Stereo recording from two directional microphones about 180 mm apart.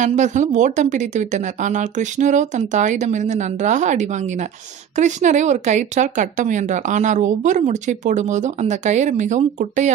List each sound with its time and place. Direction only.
0.0 s speech: 40° right (ahead or behind)